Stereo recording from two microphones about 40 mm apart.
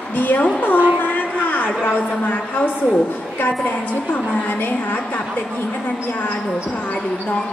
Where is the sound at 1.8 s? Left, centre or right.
Left.